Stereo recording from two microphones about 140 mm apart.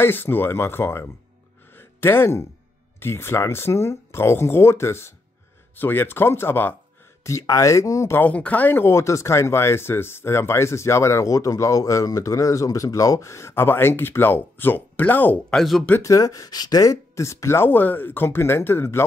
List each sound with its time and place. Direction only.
0.0 s speech: 15° left (ahead or behind)
1.7 s a sound: 15° left (ahead or behind)
3.0 s speech: 15° left (ahead or behind)